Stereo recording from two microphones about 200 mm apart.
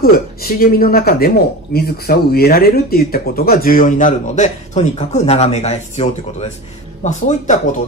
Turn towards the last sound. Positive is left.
turn(degrees=35)  # may be behind; listen again after turning